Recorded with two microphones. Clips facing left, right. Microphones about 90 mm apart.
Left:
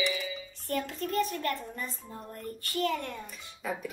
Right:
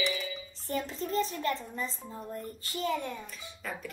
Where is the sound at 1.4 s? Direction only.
20° right (ahead or behind).